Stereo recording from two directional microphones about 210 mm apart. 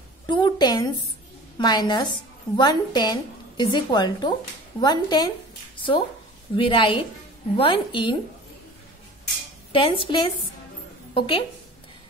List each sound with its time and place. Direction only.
0.3 s a woman's voice: 20° left (ahead or behind)
6.5 s a woman's voice: 25° left (ahead or behind)
9.7 s a woman's voice: 25° left (ahead or behind)